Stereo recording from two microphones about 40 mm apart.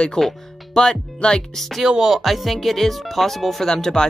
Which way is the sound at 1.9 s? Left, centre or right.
Centre.